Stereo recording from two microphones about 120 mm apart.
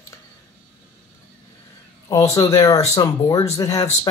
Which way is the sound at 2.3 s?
25° left (ahead or behind).